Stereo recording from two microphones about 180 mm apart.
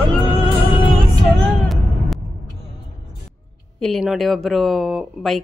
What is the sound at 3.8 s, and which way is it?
A woman's voice, centre (ahead or behind).